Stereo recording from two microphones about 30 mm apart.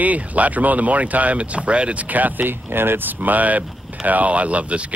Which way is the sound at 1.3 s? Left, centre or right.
Right.